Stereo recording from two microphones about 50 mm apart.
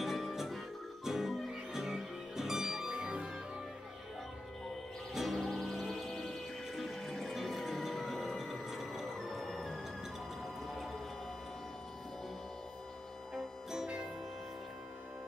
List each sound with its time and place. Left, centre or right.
0.0 s music: centre
5.1 s music: centre